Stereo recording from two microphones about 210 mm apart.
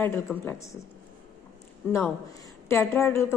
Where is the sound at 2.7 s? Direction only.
10° left (ahead or behind).